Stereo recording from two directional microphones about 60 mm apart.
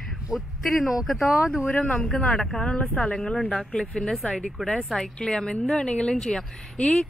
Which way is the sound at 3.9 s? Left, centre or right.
Centre.